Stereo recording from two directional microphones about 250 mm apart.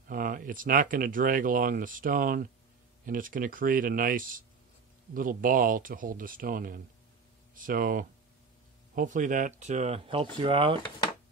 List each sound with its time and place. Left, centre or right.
0.1 s speech: right